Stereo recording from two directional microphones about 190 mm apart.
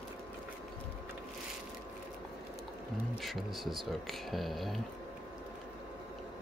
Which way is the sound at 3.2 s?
Centre (ahead or behind).